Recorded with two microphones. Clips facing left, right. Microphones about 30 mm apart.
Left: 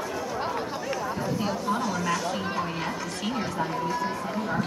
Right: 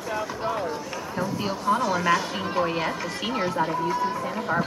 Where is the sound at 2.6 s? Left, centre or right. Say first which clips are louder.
Right 4 dB; right.